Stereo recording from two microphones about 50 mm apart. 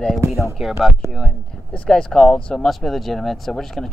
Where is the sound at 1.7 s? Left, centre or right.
Centre.